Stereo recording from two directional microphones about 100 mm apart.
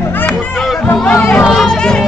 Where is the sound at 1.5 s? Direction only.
5° left (ahead or behind).